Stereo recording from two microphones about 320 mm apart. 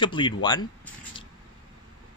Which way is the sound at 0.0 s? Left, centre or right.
Centre.